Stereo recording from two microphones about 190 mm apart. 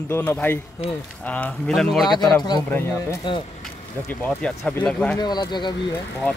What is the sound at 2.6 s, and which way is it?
A man's voice, 15° left (ahead or behind).